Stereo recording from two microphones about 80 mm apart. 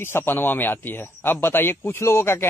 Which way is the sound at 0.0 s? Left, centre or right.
Left.